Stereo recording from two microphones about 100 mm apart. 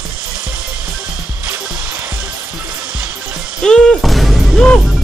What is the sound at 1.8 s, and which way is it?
Music, 20° right (ahead or behind).